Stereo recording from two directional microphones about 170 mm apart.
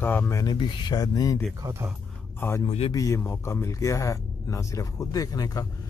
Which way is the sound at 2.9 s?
20° left (ahead or behind).